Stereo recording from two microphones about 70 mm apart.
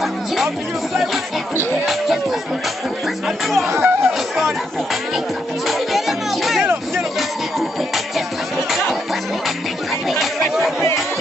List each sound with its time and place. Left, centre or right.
3.6 s speech: right
5.7 s music: centre
10.0 s chatter: centre